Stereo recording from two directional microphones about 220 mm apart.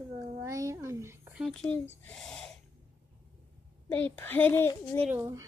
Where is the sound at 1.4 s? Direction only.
5° left (ahead or behind).